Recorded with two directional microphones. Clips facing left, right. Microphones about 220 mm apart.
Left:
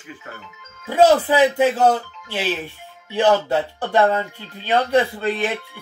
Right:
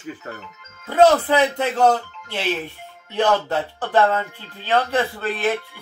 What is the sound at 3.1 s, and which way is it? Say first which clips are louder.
Speech: left 3 dB; 10° left (ahead or behind).